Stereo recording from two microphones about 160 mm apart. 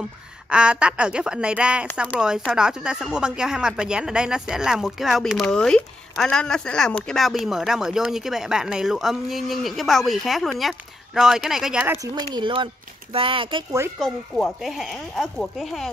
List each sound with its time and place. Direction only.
0.5 s speech: 5° right (ahead or behind)
12.0 s speech: 25° right (ahead or behind)
13.9 s speech: centre (ahead or behind)